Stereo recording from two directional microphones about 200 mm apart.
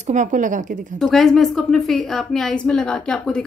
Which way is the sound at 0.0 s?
35° right (ahead or behind).